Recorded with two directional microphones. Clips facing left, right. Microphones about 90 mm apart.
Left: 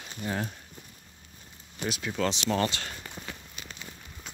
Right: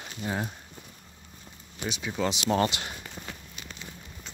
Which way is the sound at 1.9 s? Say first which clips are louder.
Left 1 dB; centre (ahead or behind).